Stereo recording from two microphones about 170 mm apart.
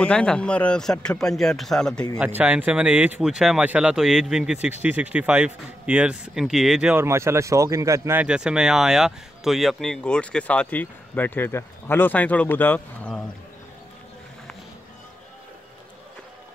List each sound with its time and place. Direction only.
0.0 s speech: 5° left (ahead or behind)
2.1 s speech: 10° right (ahead or behind); by 13.2 s 10° left (ahead or behind)